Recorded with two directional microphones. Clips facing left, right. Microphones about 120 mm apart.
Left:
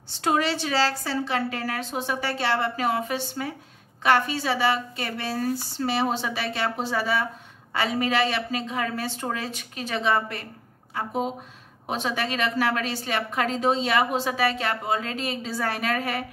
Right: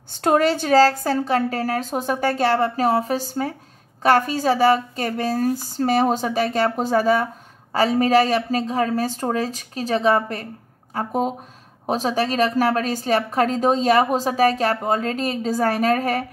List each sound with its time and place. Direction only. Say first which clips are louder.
0.1 s a woman's voice: right 6 dB; 45° right (ahead or behind)